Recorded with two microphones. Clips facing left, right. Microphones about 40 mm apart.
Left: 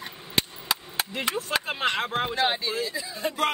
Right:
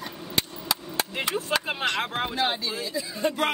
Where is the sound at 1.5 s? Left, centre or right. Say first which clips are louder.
Right 2 dB; centre.